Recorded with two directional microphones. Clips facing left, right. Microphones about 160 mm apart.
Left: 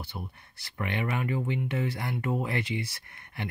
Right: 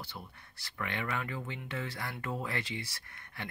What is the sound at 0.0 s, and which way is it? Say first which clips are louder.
Speech: left 6 dB; 20° left (ahead or behind).